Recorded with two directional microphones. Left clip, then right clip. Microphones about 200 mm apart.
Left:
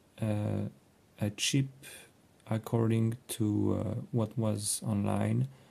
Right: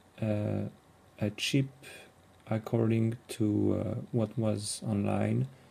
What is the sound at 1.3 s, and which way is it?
Speech, 30° left (ahead or behind).